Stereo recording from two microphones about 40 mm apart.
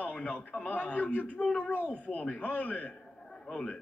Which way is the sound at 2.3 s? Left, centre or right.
Left.